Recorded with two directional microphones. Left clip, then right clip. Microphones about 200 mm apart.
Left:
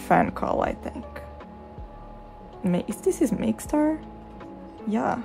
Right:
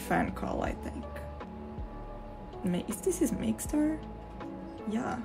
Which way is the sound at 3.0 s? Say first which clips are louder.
Left 6 dB; 40° left (ahead or behind).